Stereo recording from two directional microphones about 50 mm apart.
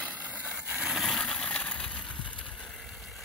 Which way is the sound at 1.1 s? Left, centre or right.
Centre.